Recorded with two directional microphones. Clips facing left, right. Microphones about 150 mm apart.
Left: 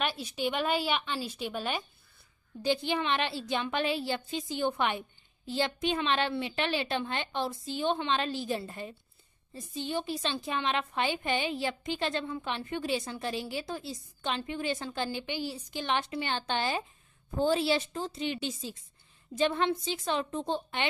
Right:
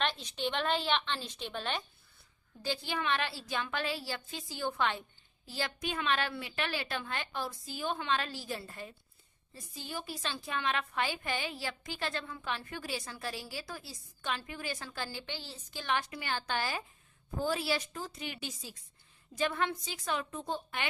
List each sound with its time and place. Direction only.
0.0 s a woman's voice: 10° left (ahead or behind)
2.6 s a woman's voice: 20° left (ahead or behind)